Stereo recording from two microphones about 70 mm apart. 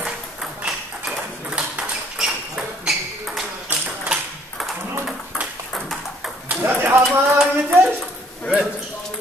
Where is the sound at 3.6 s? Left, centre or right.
Right.